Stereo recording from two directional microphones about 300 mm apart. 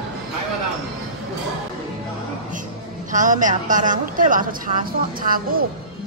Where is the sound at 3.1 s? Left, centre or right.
Right.